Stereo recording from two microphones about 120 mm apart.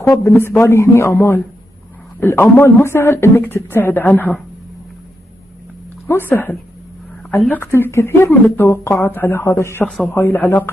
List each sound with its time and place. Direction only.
0.0 s a man's voice: 25° left (ahead or behind)
6.0 s speech: 15° left (ahead or behind)
9.8 s speech: 10° left (ahead or behind)